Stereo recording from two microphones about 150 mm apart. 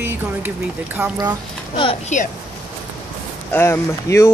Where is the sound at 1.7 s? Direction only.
35° left (ahead or behind).